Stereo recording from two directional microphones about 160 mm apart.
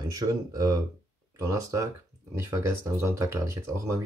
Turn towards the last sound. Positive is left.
turn(degrees=-20)  # may be behind; listen again after turning